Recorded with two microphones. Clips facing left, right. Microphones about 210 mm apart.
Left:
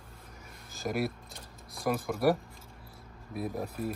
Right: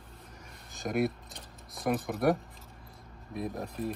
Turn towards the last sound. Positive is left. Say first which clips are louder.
# left 1 dB
turn(degrees=5)  # may be behind; listen again after turning